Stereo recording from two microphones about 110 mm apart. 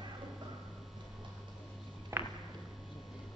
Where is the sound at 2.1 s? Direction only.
25° right (ahead or behind).